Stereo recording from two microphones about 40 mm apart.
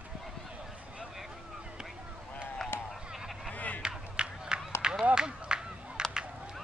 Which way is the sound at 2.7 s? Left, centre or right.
Left.